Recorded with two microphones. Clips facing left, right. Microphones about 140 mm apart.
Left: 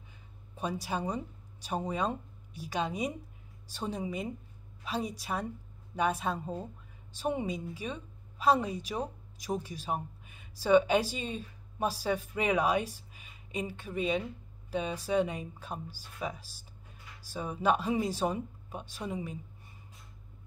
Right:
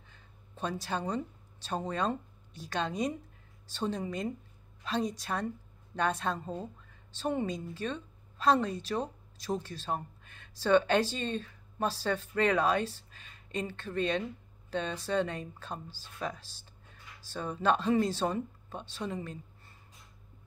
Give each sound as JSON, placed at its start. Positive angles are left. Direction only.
{"t": 0.6, "sound": "a woman's voice", "side_deg": 10}